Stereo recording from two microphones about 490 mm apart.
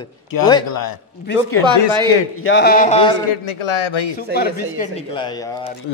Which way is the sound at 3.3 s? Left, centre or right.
Left.